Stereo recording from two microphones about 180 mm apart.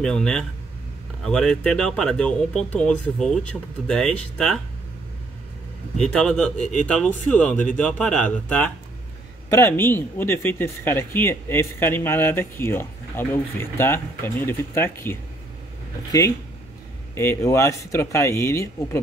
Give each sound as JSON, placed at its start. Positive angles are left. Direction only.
{"t": 0.0, "sound": "speech", "side_deg": 5}
{"t": 5.9, "sound": "speech", "side_deg": 5}
{"t": 6.6, "sound": "speech", "side_deg": 45}
{"t": 6.9, "sound": "speech", "side_deg": 5}